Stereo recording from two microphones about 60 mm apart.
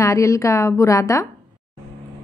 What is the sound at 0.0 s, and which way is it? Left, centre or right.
A woman's voice, left.